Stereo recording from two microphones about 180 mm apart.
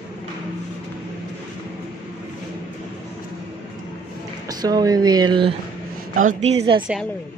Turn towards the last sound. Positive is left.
turn(degrees=-30)  # may be behind; listen again after turning